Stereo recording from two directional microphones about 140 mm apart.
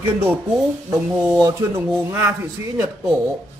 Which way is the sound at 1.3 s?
20° right (ahead or behind).